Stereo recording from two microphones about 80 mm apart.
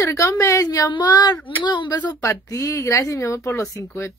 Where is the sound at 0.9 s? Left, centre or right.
Left.